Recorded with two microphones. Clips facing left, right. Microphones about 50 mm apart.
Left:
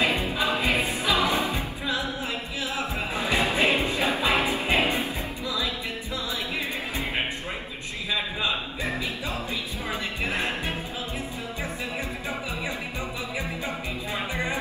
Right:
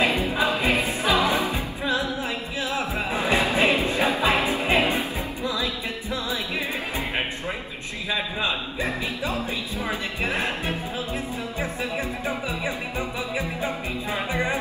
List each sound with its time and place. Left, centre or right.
0.3 s music: right
1.0 s music: right
1.3 s music: centre
3.2 s music: right
8.1 s a sound: right